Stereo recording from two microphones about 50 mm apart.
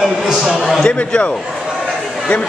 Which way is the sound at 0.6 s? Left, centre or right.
Centre.